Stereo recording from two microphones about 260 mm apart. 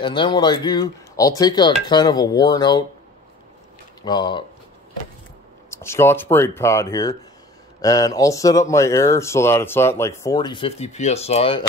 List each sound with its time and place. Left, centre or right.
0.0 s speech: centre
4.0 s speech: centre
5.7 s speech: centre